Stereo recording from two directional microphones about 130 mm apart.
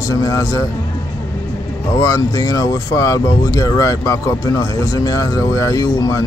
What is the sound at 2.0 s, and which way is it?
Speech, 25° left (ahead or behind).